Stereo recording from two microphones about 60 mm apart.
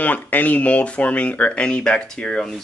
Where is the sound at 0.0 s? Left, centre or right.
Left.